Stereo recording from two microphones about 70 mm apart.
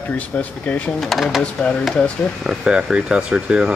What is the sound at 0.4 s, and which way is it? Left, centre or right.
Speech, left.